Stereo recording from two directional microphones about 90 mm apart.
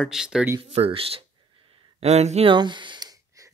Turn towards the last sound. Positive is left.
turn(degrees=-40)  # may be behind; listen again after turning